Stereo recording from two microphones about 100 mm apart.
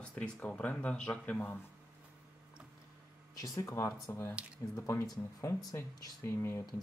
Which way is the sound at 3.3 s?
35° left (ahead or behind).